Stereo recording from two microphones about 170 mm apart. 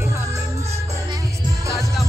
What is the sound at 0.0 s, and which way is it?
Music, 15° right (ahead or behind).